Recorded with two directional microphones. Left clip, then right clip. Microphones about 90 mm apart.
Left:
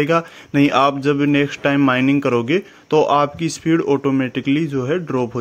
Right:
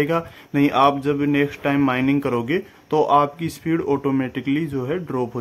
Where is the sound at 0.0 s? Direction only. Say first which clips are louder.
Left 4 dB; 30° left (ahead or behind).